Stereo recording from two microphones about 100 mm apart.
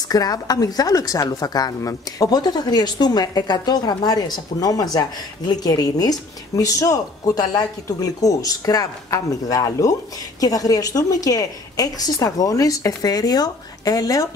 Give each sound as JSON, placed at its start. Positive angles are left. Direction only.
{"t": 0.1, "sound": "speech", "side_deg": 40}